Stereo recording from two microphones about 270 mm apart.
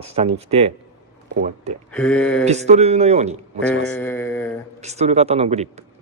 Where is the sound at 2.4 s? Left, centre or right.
Right.